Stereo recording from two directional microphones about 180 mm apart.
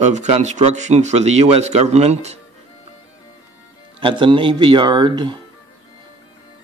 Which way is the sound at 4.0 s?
25° right (ahead or behind).